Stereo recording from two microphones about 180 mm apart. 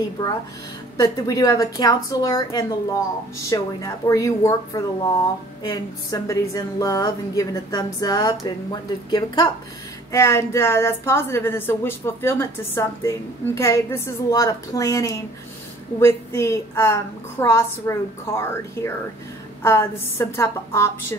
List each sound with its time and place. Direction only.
0.2 s a woman's voice: 25° left (ahead or behind)